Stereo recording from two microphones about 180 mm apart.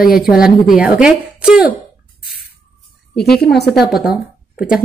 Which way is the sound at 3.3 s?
65° left (ahead or behind).